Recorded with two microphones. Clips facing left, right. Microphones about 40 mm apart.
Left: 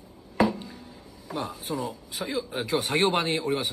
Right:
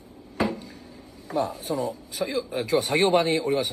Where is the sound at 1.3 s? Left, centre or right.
Left.